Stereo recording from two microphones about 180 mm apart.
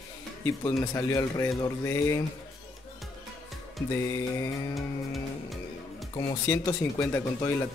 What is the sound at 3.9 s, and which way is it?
Speech, 15° left (ahead or behind).